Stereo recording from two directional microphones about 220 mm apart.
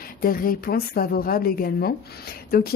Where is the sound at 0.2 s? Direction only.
40° left (ahead or behind).